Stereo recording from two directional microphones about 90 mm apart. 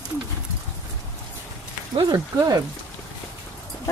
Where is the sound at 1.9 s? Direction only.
50° right (ahead or behind).